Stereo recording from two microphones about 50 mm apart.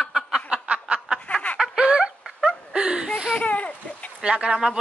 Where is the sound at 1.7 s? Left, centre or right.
Centre.